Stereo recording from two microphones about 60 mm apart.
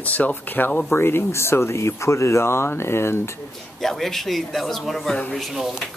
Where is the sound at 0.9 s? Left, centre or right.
Left.